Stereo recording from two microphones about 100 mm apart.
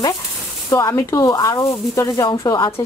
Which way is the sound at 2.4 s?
50° left (ahead or behind).